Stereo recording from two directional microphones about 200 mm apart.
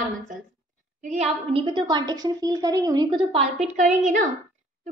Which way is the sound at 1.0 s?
35° right (ahead or behind).